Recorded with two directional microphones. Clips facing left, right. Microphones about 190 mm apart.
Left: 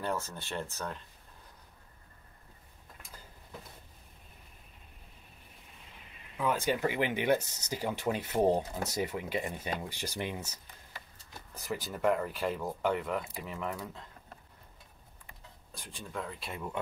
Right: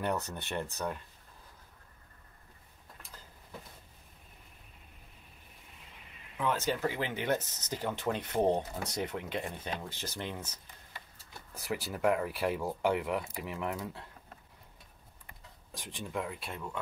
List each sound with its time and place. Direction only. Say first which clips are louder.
0.3 s speech: right 2 dB; 20° right (ahead or behind)
6.3 s speech: left 1 dB; 10° left (ahead or behind)
11.5 s speech: right 1 dB; 10° right (ahead or behind)
15.8 s speech: right 3 dB; 15° right (ahead or behind)
16.3 s speech: left 1 dB; 5° left (ahead or behind)